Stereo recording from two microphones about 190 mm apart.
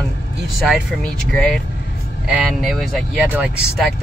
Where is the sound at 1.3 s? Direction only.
5° left (ahead or behind).